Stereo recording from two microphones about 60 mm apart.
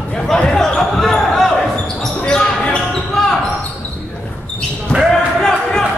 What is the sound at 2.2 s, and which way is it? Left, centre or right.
Basketball bounce, centre.